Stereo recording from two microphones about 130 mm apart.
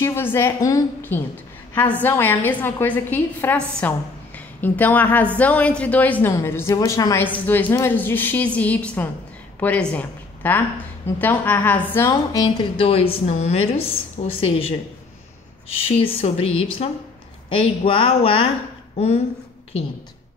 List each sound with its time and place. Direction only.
0.0 s a woman's voice: 20° left (ahead or behind)
1.0 s a woman's voice: 15° left (ahead or behind)
12.1 s a woman's voice: 30° left (ahead or behind)
12.7 s a woman's voice: 45° left (ahead or behind)
16.0 s a woman's voice: 50° left (ahead or behind)